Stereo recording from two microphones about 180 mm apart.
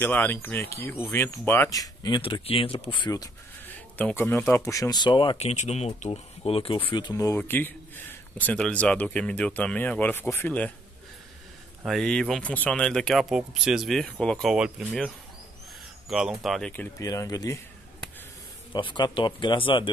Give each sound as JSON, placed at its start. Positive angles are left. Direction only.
{"t": 0.0, "sound": "speech", "side_deg": 10}
{"t": 3.6, "sound": "speech", "side_deg": 10}
{"t": 11.8, "sound": "speech", "side_deg": 0}
{"t": 16.1, "sound": "speech", "side_deg": 0}
{"t": 17.0, "sound": "speech", "side_deg": 20}
{"t": 18.7, "sound": "speech", "side_deg": 25}